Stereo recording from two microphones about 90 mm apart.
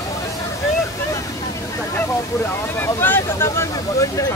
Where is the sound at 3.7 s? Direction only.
40° left (ahead or behind).